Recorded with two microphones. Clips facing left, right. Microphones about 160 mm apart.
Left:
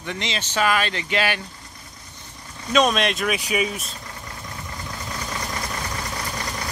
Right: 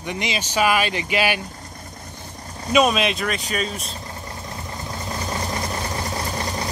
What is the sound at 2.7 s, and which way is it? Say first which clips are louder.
Speech: right 1 dB; 5° right (ahead or behind).